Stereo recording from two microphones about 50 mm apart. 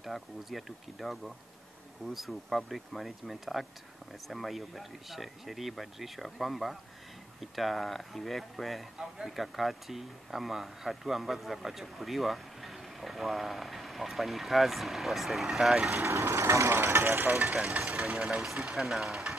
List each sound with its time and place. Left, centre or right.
0.0 s speech: centre
15.9 s speech: right
18.4 s speech: centre